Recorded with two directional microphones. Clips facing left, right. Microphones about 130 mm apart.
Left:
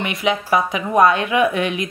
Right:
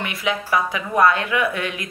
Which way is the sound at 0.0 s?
20° left (ahead or behind).